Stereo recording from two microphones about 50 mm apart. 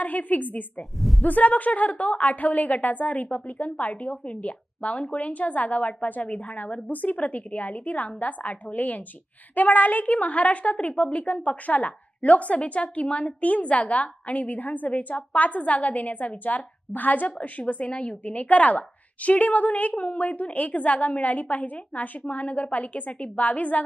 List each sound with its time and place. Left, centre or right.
0.0 s a woman's voice: left
0.7 s speech: centre
1.2 s a woman's voice: left